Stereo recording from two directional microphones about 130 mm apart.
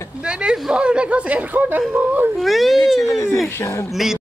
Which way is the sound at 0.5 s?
5° right (ahead or behind).